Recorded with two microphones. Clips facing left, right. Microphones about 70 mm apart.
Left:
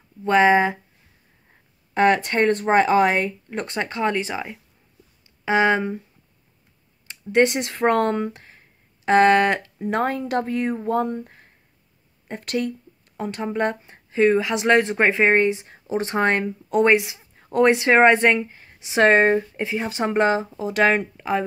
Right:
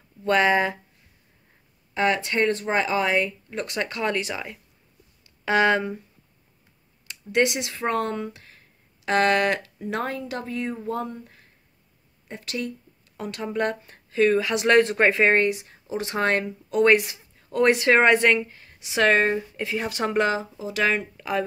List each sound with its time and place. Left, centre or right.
0.2 s speech: left
2.0 s speech: left
7.1 s speech: left
13.2 s speech: left
16.8 s speech: centre
17.4 s a sound: left
17.6 s speech: centre
20.6 s speech: left
21.2 s speech: left